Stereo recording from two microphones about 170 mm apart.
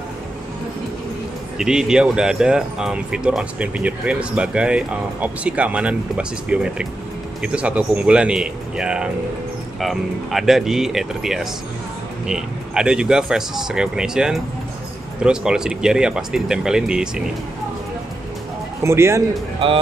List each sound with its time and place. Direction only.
1.6 s speech: 5° right (ahead or behind)
18.8 s a man's voice: 15° right (ahead or behind)